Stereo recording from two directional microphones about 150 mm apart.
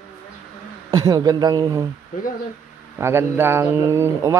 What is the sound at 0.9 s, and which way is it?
Speech, 25° right (ahead or behind).